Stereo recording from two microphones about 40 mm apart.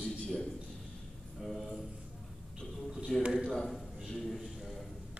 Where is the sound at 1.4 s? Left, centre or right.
Centre.